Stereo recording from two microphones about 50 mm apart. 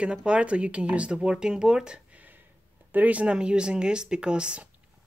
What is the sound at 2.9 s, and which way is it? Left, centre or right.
Speech, right.